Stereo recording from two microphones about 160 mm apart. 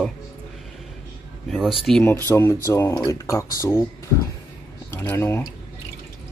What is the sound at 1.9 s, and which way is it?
Speech, 5° left (ahead or behind).